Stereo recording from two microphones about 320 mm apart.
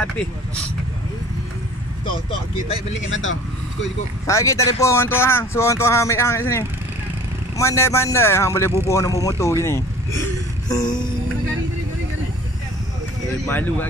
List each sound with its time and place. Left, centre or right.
3.1 s speech: left
4.3 s speech: centre
13.5 s speech: centre